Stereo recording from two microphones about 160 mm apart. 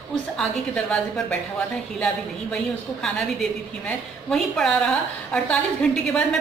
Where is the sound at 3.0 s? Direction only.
Centre (ahead or behind).